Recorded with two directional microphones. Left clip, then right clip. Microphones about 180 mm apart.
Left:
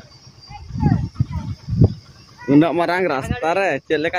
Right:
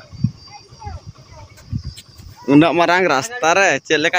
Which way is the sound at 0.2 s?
70° right (ahead or behind).